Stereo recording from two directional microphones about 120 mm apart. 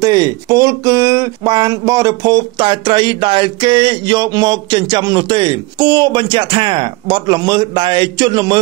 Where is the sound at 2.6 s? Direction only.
45° right (ahead or behind).